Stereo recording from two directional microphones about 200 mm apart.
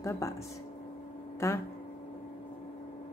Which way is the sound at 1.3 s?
15° left (ahead or behind).